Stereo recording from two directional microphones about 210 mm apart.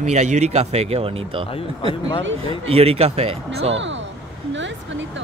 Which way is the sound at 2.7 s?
30° right (ahead or behind).